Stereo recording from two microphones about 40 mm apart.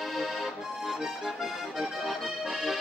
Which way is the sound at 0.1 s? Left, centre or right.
Centre.